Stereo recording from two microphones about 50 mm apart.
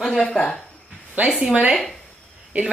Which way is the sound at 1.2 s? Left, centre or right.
Right.